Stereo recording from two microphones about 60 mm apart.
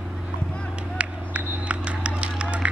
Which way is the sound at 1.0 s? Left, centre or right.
Right.